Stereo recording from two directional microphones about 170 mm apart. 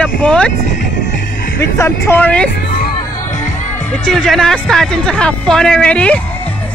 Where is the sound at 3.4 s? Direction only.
45° left (ahead or behind).